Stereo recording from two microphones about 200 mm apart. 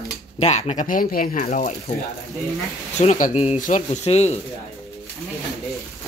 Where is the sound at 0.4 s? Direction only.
35° left (ahead or behind).